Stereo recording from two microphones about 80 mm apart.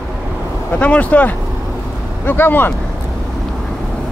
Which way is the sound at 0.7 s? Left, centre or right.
Centre.